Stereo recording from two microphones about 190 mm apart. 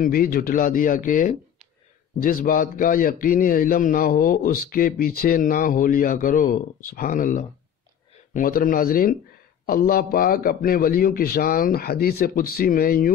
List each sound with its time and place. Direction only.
0.0 s a man's voice: 50° left (ahead or behind)